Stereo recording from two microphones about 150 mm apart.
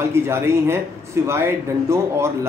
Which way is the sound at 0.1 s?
15° right (ahead or behind).